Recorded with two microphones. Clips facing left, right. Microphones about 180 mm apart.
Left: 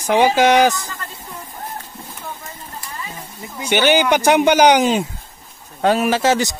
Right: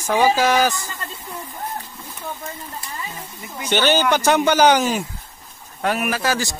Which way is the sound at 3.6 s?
10° left (ahead or behind).